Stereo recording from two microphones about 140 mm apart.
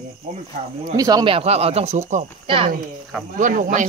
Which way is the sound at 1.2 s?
45° right (ahead or behind).